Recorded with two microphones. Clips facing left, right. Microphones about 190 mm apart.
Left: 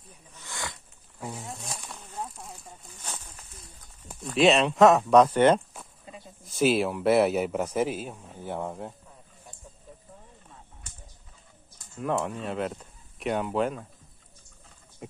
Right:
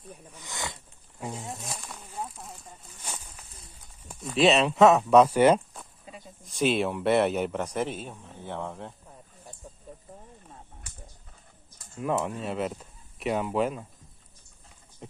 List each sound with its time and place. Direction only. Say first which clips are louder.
0.3 s wild animals: even; 20° right (ahead or behind)
1.2 s speech: right 1 dB; 15° right (ahead or behind)
1.5 s a sound: right 1 dB; centre (ahead or behind)
4.1 s speech: left 1 dB; centre (ahead or behind)
12.0 s speech: even; 5° right (ahead or behind)